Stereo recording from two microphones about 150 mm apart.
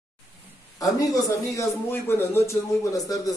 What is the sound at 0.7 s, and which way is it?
Speech, 25° left (ahead or behind).